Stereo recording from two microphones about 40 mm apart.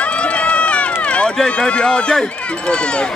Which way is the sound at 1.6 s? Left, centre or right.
Left.